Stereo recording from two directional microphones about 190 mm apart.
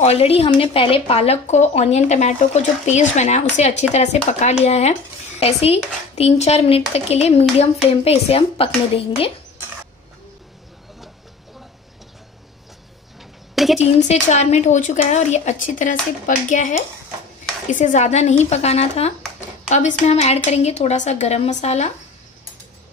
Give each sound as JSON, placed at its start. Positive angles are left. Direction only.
{"t": 0.0, "sound": "speech", "side_deg": 35}
{"t": 13.7, "sound": "speech", "side_deg": 40}